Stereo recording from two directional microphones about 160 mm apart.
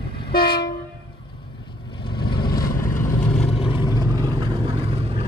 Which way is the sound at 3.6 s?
25° left (ahead or behind).